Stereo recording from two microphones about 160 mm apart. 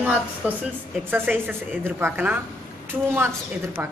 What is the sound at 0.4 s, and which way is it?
A woman's voice, 10° right (ahead or behind).